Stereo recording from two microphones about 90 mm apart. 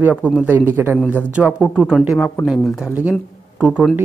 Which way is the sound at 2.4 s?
Centre (ahead or behind).